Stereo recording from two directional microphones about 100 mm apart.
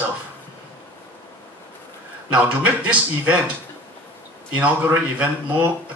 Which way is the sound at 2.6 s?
15° right (ahead or behind).